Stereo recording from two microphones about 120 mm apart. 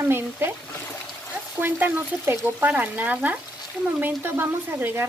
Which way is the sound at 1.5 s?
15° right (ahead or behind).